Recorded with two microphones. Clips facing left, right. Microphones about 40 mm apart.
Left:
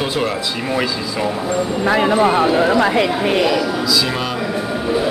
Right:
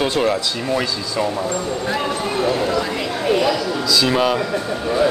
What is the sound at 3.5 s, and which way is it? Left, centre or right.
Speech, centre.